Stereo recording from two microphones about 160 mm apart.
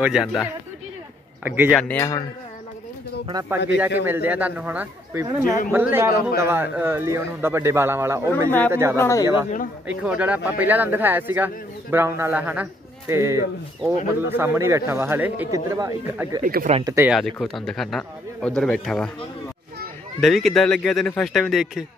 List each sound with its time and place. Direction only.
0.0 s speech: 5° right (ahead or behind)
2.0 s a sound: 20° left (ahead or behind)
3.4 s speech: 10° right (ahead or behind)
8.5 s speech: 10° left (ahead or behind)
9.2 s speech: 20° right (ahead or behind)
16.4 s speech: 60° right (ahead or behind)
16.8 s speech: 20° right (ahead or behind)
17.1 s speech: centre (ahead or behind)
20.2 s speech: centre (ahead or behind)